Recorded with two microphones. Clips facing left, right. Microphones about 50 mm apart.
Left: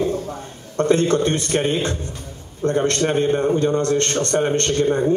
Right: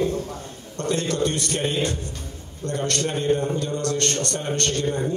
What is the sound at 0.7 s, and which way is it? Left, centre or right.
A man's voice, left.